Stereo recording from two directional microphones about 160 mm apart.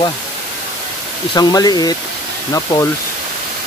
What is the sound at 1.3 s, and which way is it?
Speech, 25° left (ahead or behind).